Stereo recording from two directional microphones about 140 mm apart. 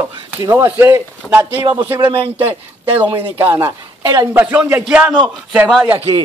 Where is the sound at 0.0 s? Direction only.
20° right (ahead or behind).